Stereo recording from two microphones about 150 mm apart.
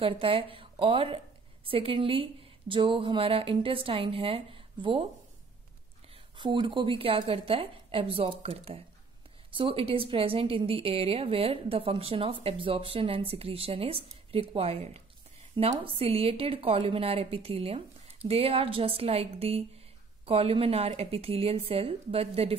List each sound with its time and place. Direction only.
0.0 s a woman's voice: 40° right (ahead or behind)
6.3 s a woman's voice: 30° right (ahead or behind)